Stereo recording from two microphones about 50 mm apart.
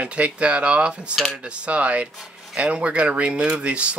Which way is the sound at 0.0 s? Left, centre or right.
Right.